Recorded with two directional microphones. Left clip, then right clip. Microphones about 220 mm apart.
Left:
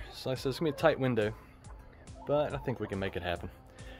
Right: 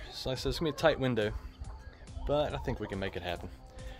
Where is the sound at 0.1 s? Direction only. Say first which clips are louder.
Even; 5° left (ahead or behind).